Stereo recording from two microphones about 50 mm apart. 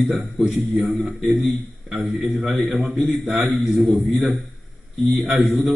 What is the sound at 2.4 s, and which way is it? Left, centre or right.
Speech, centre.